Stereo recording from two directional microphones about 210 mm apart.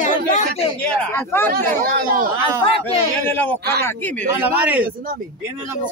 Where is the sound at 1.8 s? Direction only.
45° right (ahead or behind).